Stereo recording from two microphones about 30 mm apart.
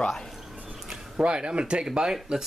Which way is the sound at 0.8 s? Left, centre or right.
Centre.